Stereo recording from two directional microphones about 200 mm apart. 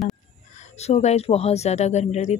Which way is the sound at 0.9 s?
35° left (ahead or behind).